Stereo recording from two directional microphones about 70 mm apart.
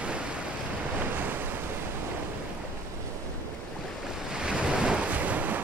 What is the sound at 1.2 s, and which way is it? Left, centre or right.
Waves, right.